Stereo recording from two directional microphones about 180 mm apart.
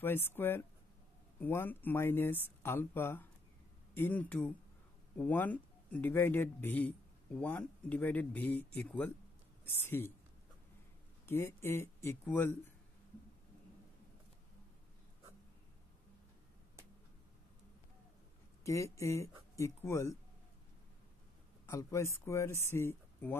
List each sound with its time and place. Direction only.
0.0 s speech: 10° left (ahead or behind)
11.2 s speech: 15° left (ahead or behind)
18.6 s speech: 15° left (ahead or behind)
21.6 s speech: 15° left (ahead or behind)